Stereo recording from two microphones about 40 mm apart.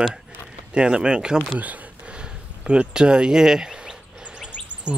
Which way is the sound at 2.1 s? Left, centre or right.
Right.